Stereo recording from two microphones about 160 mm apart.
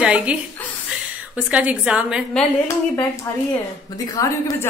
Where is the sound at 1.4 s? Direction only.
10° right (ahead or behind).